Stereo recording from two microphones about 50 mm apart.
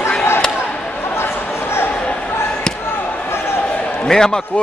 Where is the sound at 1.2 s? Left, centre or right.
Left.